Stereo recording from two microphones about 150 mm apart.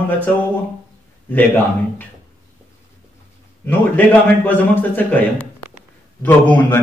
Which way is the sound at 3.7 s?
10° left (ahead or behind).